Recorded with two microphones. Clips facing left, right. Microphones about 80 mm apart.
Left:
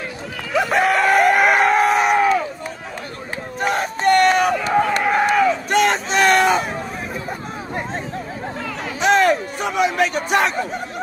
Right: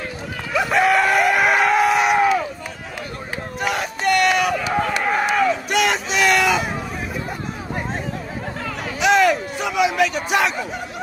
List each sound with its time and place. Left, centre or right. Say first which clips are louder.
0.6 s chicken: even; left
3.5 s crowd: left 3 dB; left
5.0 s a sound: left 3 dB; centre
5.7 s crowd: left 3 dB; left
9.0 s hubbub: left 1 dB; left